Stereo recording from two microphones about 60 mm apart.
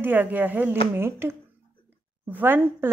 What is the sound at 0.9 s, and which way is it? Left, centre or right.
A woman's voice, right.